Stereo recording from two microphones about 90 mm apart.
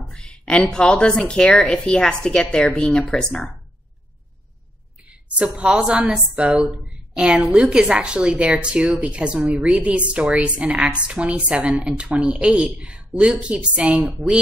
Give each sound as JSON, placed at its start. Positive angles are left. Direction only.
{"t": 0.1, "sound": "a woman's voice", "side_deg": 10}
{"t": 5.0, "sound": "a woman's voice", "side_deg": -10}